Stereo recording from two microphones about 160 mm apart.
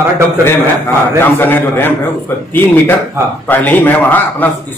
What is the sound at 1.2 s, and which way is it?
Speech, 15° left (ahead or behind).